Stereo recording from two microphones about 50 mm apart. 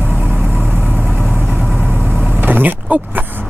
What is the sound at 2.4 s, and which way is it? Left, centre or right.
Vehicle, right.